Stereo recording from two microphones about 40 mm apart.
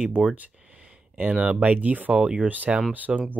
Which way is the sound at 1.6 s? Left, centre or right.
Right.